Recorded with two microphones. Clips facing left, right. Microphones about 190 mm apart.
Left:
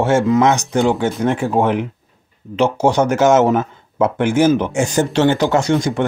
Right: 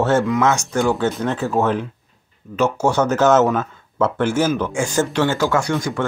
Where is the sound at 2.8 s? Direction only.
15° left (ahead or behind).